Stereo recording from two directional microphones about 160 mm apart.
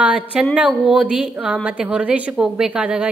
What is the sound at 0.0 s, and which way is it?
A woman's voice, 10° right (ahead or behind).